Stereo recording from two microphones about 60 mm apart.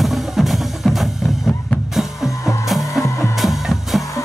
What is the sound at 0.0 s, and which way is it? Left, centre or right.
Percussion, centre.